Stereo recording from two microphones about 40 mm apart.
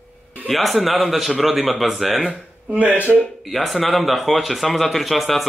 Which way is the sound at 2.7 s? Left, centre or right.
Right.